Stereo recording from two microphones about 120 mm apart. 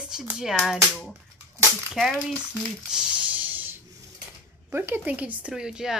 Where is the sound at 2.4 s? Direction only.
5° right (ahead or behind).